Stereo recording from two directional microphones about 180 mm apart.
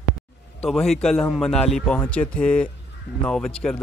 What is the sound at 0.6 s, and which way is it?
Speech, centre (ahead or behind).